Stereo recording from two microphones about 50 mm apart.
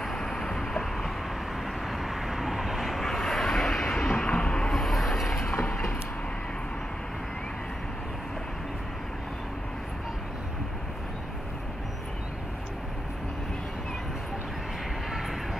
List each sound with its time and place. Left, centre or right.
0.0 s vehicle: centre
4.1 s a sound: centre
4.7 s vehicle: centre